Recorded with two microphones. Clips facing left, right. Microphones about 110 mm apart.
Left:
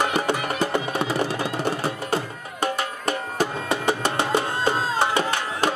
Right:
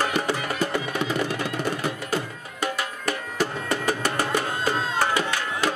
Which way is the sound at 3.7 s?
25° left (ahead or behind).